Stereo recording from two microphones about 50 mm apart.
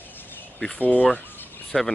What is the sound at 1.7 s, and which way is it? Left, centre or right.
Speech, centre.